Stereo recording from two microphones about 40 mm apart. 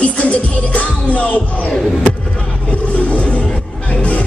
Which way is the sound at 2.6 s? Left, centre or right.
Left.